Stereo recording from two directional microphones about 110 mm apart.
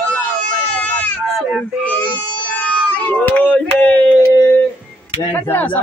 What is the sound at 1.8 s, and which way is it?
Speech, 15° left (ahead or behind).